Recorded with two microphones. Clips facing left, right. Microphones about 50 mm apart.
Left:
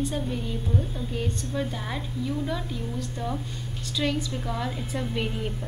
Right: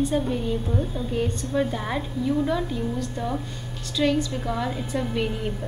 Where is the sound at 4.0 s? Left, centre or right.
Centre.